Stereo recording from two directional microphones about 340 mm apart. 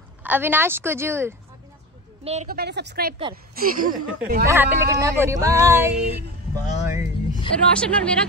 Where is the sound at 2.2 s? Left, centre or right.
Centre.